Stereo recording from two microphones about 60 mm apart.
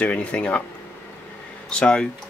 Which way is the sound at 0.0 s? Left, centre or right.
Left.